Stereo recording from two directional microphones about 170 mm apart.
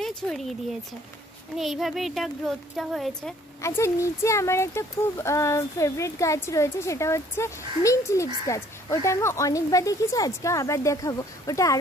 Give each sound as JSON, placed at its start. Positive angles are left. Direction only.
{"t": 0.0, "sound": "speech", "side_deg": 0}
{"t": 1.6, "sound": "speech", "side_deg": 0}
{"t": 3.6, "sound": "speech", "side_deg": 15}